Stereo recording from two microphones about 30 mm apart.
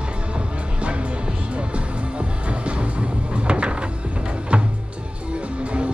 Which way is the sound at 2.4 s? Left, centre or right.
Right.